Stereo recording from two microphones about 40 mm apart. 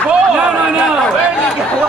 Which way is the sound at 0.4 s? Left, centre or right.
Right.